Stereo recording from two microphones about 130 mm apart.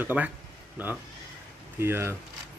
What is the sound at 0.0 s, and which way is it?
Speech, 10° right (ahead or behind).